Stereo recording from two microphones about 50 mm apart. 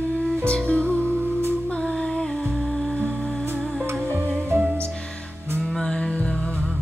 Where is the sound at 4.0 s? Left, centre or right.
Right.